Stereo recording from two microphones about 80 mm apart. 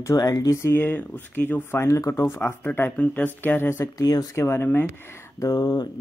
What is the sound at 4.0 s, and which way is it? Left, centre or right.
Speech, left.